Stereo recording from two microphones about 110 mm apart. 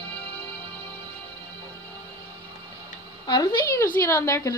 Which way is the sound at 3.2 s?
40° left (ahead or behind).